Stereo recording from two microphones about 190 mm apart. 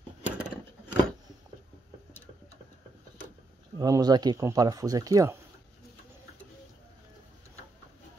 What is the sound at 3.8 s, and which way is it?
Speech, 20° right (ahead or behind).